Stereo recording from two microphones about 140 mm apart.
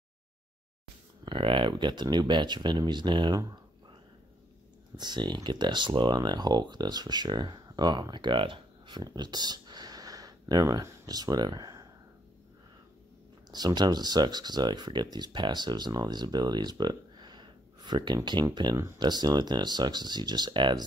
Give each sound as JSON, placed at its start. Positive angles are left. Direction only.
{"t": 1.2, "sound": "speech", "side_deg": -35}
{"t": 4.9, "sound": "speech", "side_deg": -30}
{"t": 13.5, "sound": "speech", "side_deg": -30}